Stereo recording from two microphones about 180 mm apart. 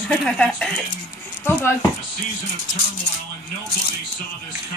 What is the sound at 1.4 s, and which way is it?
Speech, 10° left (ahead or behind).